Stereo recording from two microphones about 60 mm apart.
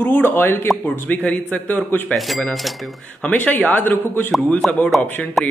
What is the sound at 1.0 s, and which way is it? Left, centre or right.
A man's voice, left.